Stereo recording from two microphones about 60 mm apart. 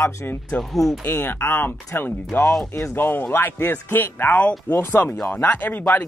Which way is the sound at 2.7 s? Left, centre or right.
Left.